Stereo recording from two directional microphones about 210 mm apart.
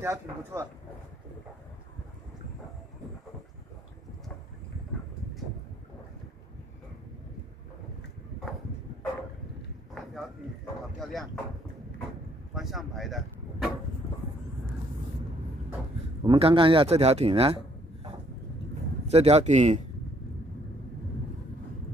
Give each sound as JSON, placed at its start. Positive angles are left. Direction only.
{"t": 0.0, "sound": "speech", "side_deg": -10}
{"t": 11.0, "sound": "speech", "side_deg": 0}
{"t": 12.5, "sound": "speech", "side_deg": 0}
{"t": 16.3, "sound": "speech", "side_deg": -25}
{"t": 19.0, "sound": "speech", "side_deg": -30}